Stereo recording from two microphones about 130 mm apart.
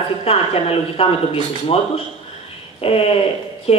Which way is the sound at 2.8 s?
45° left (ahead or behind).